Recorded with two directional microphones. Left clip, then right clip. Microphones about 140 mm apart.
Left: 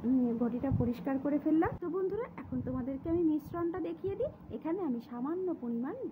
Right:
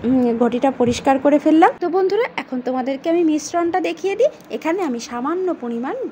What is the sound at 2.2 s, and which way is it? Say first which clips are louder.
Speech: right 18 dB; 30° right (ahead or behind).